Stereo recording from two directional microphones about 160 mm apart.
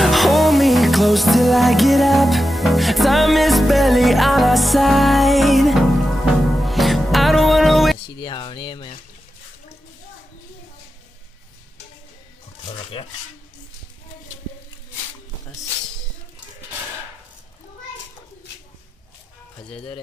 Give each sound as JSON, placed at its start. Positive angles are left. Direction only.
{"t": 0.0, "sound": "music", "side_deg": 0}
{"t": 8.2, "sound": "a sound", "side_deg": 30}
{"t": 12.6, "sound": "rub", "side_deg": 35}
{"t": 19.7, "sound": "speech", "side_deg": 35}